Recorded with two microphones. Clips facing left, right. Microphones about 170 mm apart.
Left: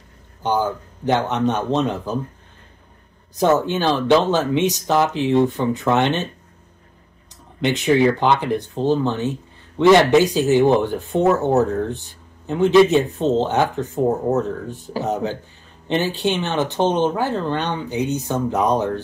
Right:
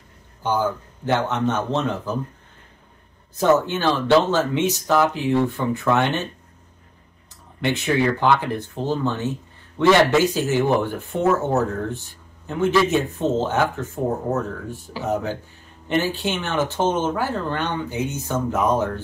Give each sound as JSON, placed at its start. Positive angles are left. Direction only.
{"t": 0.4, "sound": "speech", "side_deg": 20}
{"t": 3.3, "sound": "speech", "side_deg": 20}
{"t": 7.6, "sound": "speech", "side_deg": 20}
{"t": 15.9, "sound": "speech", "side_deg": 20}